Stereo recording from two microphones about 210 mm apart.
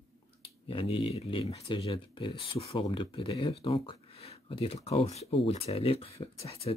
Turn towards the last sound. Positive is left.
turn(degrees=25)  # may be behind; listen again after turning